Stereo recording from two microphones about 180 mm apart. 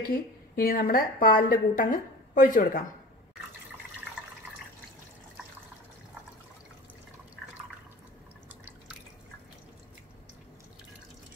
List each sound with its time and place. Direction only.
0.0 s a woman's voice: 55° left (ahead or behind)